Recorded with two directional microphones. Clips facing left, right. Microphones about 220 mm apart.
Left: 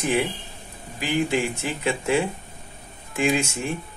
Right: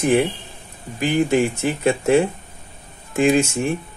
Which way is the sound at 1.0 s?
50° right (ahead or behind).